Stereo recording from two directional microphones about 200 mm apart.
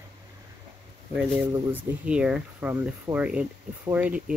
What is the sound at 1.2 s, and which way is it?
Speech, 5° right (ahead or behind).